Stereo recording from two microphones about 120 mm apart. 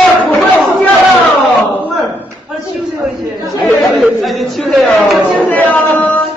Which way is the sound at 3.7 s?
Centre (ahead or behind).